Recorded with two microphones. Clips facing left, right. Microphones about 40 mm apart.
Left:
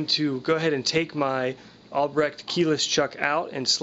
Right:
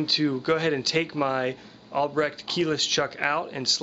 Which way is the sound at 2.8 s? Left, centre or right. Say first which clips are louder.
Left 2 dB; right.